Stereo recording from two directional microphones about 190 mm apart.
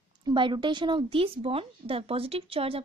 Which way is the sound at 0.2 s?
25° right (ahead or behind).